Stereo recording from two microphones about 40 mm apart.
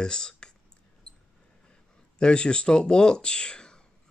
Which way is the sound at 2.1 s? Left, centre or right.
Left.